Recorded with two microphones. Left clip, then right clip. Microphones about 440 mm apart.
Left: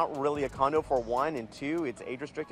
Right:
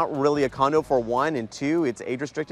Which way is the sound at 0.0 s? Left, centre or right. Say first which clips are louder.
Right 7 dB; right.